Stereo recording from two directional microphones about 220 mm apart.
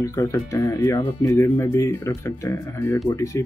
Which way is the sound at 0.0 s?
15° left (ahead or behind).